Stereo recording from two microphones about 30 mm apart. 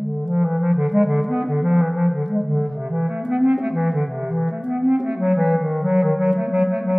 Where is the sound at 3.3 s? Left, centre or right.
Right.